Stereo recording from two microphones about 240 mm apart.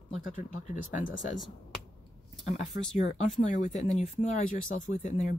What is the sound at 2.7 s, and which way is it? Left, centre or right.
Speech, left.